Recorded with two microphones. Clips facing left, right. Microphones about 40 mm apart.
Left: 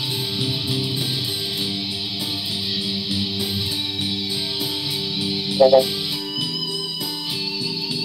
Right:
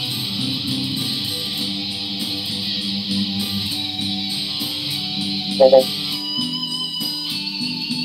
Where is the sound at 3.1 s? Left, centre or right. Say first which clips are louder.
Right 2 dB; right.